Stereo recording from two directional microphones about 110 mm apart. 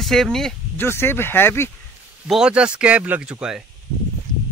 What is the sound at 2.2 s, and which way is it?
Speech, 5° right (ahead or behind).